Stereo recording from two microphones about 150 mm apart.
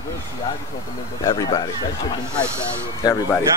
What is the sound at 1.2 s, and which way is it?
Speech, 25° left (ahead or behind).